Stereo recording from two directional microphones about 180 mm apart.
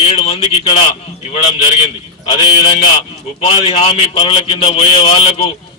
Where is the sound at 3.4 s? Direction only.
35° left (ahead or behind).